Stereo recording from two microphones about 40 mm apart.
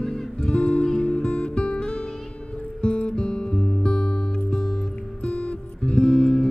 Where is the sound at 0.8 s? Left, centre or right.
Centre.